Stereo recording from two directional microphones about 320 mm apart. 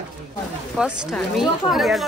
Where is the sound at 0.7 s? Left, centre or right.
Centre.